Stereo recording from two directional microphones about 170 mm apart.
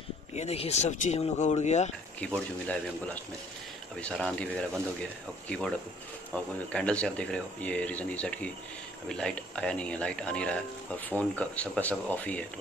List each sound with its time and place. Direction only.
0.4 s speech: 40° left (ahead or behind)
2.1 s speech: 5° left (ahead or behind)
4.0 s speech: 5° left (ahead or behind)
5.5 s speech: 5° left (ahead or behind)